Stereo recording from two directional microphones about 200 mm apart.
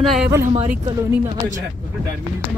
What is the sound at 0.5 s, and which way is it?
Speech, 35° right (ahead or behind).